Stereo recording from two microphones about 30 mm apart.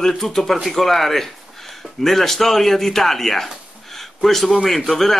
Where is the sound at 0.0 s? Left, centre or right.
Centre.